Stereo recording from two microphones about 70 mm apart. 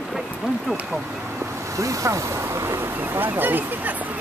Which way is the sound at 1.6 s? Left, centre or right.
Right.